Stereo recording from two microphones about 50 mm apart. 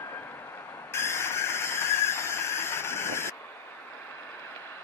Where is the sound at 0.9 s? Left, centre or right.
Left.